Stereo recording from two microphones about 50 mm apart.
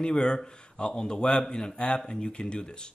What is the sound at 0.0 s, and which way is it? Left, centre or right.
A man's voice, centre.